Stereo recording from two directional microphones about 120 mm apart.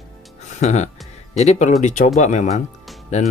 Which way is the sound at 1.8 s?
90° left.